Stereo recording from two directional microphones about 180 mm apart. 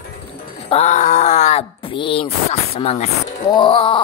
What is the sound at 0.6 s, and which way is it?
Speech, 40° left (ahead or behind).